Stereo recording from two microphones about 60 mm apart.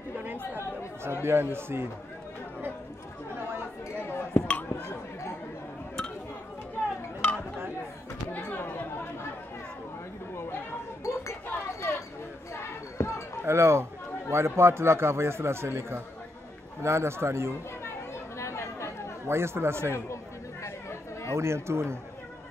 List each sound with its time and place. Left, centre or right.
1.0 s a man's voice: right
4.0 s chink: left
4.5 s a sound: left
7.2 s a sound: centre
8.3 s chatter: left
11.0 s chink: left
11.5 s a sound: left
12.5 s basketball bounce: left
13.5 s a man's voice: right
17.8 s chatter: left
19.2 s a man's voice: right
20.6 s chatter: left
21.3 s a man's voice: right